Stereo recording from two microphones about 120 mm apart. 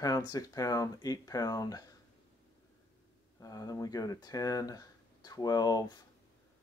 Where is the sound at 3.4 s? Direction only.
30° left (ahead or behind).